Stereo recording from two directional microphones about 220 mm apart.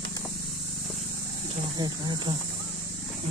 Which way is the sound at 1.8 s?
20° right (ahead or behind).